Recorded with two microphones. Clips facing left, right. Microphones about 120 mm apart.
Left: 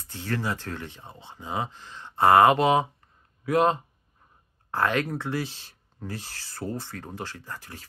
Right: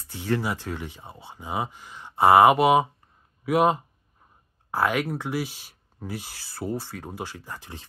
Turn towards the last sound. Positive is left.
turn(degrees=-20)  # may be behind; listen again after turning